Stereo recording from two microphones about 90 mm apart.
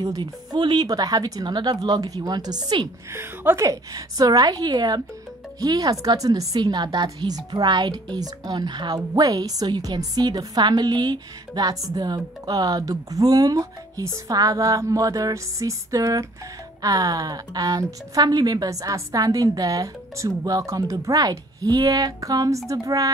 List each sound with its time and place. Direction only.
0.2 s a woman's voice: 55° right (ahead or behind)
3.1 s a woman's voice: 30° right (ahead or behind)
3.6 s a woman's voice: 40° right (ahead or behind)
14.3 s a sound: 40° right (ahead or behind)
16.8 s a woman's voice: 45° right (ahead or behind)
22.7 s a sound: 40° right (ahead or behind)